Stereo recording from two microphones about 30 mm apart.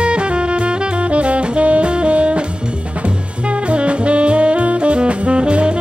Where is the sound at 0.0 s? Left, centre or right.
Right.